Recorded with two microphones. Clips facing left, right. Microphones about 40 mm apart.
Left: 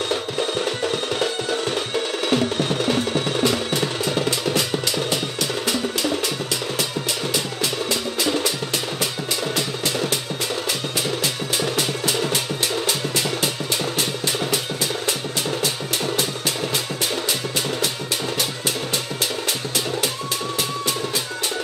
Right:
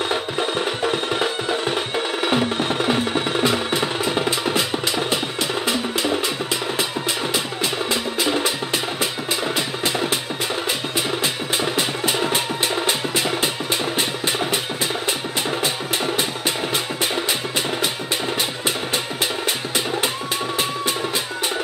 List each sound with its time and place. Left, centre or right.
0.1 s music: centre
7.9 s music: centre
11.5 s music: right
16.7 s music: right